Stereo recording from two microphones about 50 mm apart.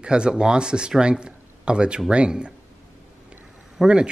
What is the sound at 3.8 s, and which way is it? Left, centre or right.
Speech, centre.